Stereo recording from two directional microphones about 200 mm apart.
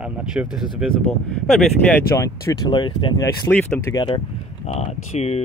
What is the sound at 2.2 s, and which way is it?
Speech, 20° left (ahead or behind).